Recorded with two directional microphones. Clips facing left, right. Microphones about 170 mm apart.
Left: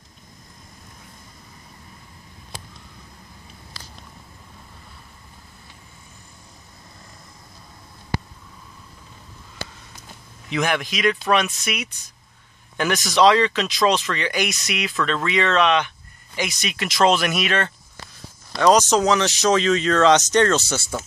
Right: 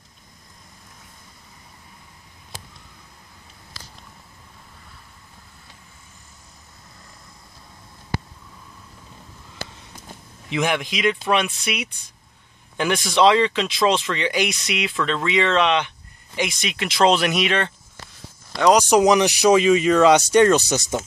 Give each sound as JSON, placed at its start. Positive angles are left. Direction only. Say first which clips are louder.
{"t": 10.5, "sound": "a man's voice", "louder": "even", "side_deg": -20}
{"t": 13.0, "sound": "speech", "louder": "even", "side_deg": -25}
{"t": 14.9, "sound": "speech", "louder": "even", "side_deg": -15}